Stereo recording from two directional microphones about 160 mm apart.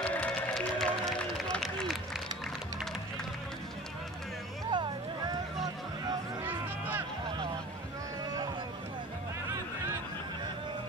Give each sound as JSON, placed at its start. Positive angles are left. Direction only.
{"t": 0.0, "sound": "music", "side_deg": 10}
{"t": 4.6, "sound": "vehicle", "side_deg": -25}
{"t": 6.4, "sound": "a sound", "side_deg": -10}